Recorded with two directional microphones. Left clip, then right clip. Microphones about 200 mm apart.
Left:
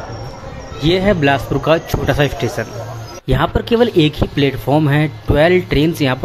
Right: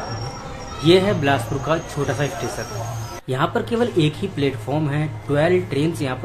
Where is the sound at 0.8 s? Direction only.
35° left (ahead or behind).